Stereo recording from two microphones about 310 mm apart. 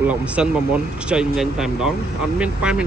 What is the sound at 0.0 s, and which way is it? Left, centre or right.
Speech, centre.